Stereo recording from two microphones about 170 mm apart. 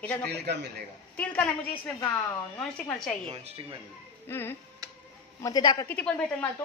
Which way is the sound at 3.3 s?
35° right (ahead or behind).